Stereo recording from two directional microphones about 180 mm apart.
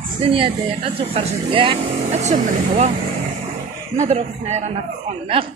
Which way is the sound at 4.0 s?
35° right (ahead or behind).